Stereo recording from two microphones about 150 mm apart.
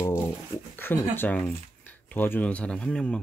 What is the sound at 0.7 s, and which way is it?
Speech, 15° left (ahead or behind).